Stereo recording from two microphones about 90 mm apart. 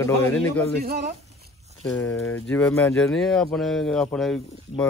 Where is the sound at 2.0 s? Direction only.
25° left (ahead or behind).